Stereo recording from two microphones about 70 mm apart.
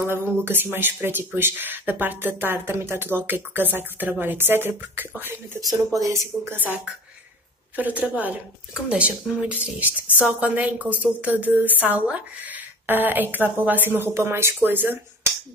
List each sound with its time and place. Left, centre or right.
0.1 s speech: right
5.9 s speech: right
7.7 s a woman's voice: right